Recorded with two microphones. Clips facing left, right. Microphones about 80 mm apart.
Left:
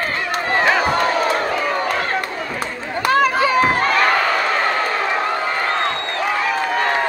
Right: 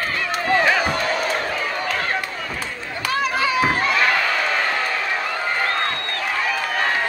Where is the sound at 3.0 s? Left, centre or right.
Left.